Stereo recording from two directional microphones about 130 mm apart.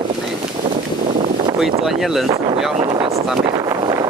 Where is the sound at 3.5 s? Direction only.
25° right (ahead or behind).